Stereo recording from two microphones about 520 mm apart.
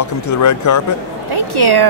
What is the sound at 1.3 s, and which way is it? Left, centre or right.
Speech, right.